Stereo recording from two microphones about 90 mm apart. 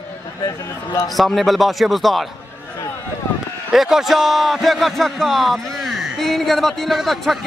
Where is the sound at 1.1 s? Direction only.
Centre (ahead or behind).